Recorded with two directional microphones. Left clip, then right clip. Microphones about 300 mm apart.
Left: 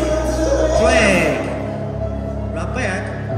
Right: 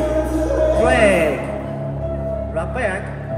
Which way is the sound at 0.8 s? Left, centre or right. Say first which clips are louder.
Even; centre.